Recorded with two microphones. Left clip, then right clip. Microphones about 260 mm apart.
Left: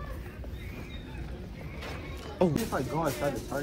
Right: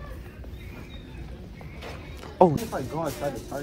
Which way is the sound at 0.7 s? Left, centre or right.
Centre.